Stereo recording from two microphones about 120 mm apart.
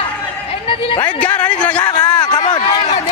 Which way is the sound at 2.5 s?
45° left (ahead or behind).